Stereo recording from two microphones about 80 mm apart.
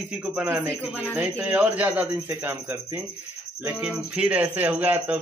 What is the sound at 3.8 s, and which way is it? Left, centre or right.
Speech, centre.